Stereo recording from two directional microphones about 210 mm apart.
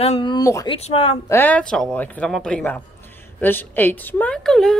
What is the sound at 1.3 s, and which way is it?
A woman's voice, 10° left (ahead or behind).